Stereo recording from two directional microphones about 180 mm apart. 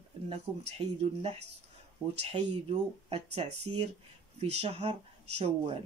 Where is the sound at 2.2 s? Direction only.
35° right (ahead or behind).